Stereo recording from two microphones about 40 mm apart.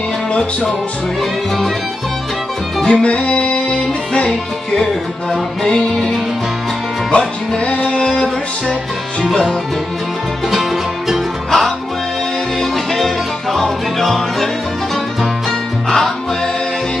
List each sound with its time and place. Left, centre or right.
2.9 s music: left
5.6 s music: centre
7.1 s music: left
10.5 s music: centre
12.5 s music: centre